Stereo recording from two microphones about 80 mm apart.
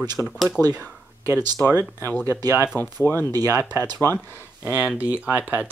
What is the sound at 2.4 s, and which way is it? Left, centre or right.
Speech, right.